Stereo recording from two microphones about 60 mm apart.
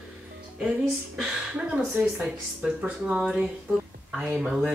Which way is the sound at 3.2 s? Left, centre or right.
Centre.